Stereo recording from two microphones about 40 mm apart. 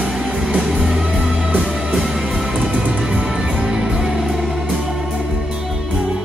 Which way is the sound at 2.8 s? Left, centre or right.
Right.